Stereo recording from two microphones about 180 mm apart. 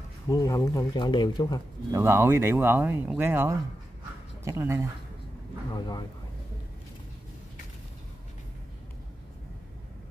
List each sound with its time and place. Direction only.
0.3 s speech: 20° left (ahead or behind)
1.9 s speech: 15° right (ahead or behind)
5.7 s speech: 20° left (ahead or behind)